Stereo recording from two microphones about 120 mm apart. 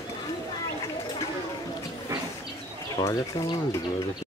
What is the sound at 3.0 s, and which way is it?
Speech, 35° left (ahead or behind).